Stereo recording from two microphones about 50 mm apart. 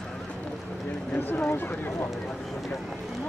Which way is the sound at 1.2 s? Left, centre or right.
Left.